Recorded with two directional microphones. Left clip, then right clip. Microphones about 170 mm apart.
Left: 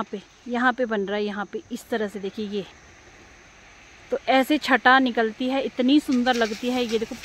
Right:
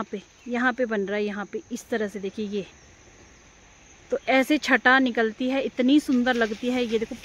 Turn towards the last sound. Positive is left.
turn(degrees=0)  # may be behind; listen again after turning